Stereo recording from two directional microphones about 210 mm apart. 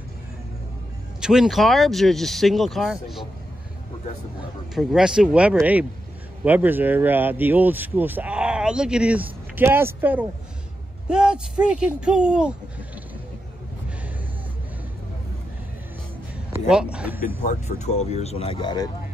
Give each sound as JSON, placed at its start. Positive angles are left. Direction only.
{"t": 1.2, "sound": "speech", "side_deg": -5}
{"t": 4.7, "sound": "speech", "side_deg": -5}
{"t": 16.6, "sound": "speech", "side_deg": -5}
{"t": 17.4, "sound": "speech", "side_deg": 35}